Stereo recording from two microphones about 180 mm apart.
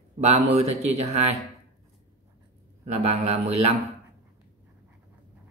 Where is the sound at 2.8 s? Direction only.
35° right (ahead or behind).